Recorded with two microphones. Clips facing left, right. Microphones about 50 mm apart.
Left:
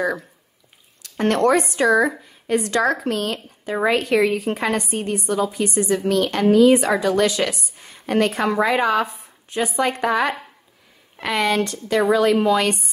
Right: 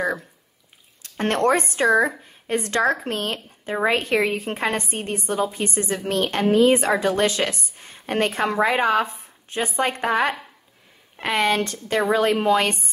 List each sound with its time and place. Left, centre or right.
1.0 s a woman's voice: right